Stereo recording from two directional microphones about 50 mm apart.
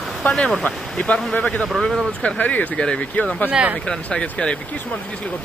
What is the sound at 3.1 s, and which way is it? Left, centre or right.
Speech, left.